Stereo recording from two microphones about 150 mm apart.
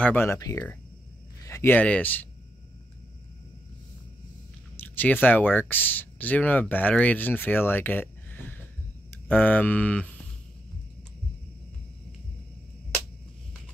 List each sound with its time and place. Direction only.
0.0 s speech: 15° left (ahead or behind)
4.7 s speech: 10° left (ahead or behind)